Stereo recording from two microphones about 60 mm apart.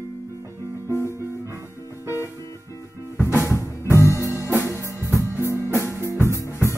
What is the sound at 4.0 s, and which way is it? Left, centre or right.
Music, right.